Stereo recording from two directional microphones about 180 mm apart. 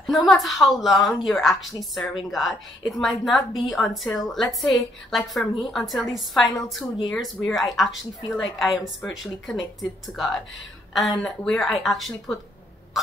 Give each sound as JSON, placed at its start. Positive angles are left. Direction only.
{"t": 0.0, "sound": "a woman's voice", "side_deg": 0}
{"t": 8.2, "sound": "speech", "side_deg": 20}
{"t": 8.8, "sound": "a woman's voice", "side_deg": 0}